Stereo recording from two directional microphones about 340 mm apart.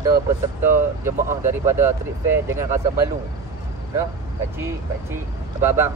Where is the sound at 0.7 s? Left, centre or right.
Centre.